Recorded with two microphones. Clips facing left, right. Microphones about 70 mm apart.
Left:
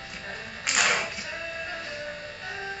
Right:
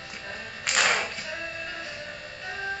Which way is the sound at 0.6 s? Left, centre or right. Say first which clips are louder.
Right 1 dB; centre.